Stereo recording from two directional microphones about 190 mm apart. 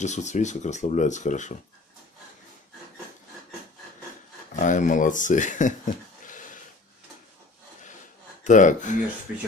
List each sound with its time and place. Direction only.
0.0 s speech: 40° left (ahead or behind)
4.6 s speech: 40° left (ahead or behind)
8.5 s speech: 40° left (ahead or behind)